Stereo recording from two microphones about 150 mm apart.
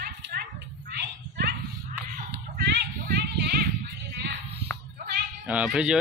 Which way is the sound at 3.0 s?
90° right.